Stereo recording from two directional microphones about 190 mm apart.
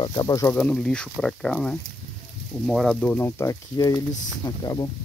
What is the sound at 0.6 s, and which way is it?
Speech, 5° left (ahead or behind).